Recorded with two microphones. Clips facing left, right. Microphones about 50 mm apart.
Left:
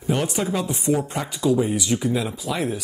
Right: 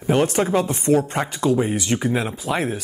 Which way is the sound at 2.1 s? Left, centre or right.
Right.